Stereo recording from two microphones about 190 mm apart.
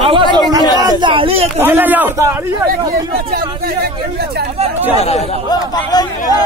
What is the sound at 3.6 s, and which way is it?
Speech, 55° right (ahead or behind).